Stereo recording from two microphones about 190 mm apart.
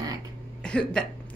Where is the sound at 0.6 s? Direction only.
5° left (ahead or behind).